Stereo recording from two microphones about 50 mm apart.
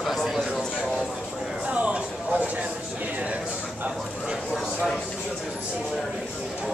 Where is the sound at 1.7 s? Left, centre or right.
Right.